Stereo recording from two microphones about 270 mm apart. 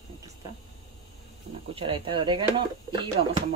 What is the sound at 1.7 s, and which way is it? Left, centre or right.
Speech, centre.